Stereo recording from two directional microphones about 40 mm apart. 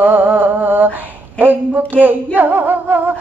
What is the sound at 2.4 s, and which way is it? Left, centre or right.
Singing, right.